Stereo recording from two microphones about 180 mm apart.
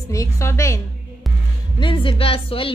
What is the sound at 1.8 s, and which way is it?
Speech, 30° left (ahead or behind).